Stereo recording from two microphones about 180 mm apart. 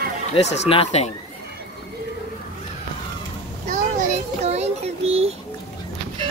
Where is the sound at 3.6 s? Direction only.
45° right (ahead or behind).